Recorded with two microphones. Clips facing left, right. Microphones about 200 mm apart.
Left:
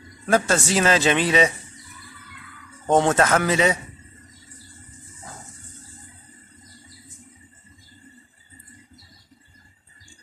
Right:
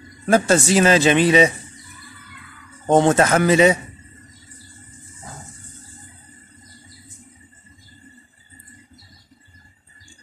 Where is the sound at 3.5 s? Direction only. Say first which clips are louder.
Right 6 dB; 10° right (ahead or behind).